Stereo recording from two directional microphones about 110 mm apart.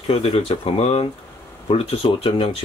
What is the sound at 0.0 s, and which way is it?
Speech, 65° left (ahead or behind).